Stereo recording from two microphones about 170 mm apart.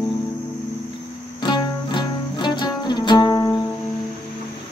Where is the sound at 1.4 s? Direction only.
25° left (ahead or behind).